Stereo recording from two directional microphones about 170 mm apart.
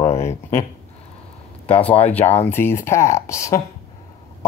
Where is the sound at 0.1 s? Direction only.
40° left (ahead or behind).